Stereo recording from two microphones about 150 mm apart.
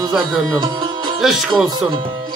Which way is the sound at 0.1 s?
Centre (ahead or behind).